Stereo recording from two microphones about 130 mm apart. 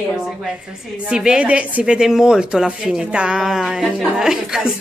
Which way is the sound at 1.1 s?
5° right (ahead or behind).